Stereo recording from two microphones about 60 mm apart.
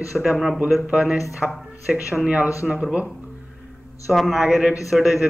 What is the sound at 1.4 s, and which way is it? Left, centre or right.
Speech, centre.